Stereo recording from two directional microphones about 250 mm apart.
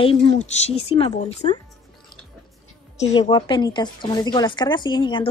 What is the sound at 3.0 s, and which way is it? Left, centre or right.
A woman's voice, centre.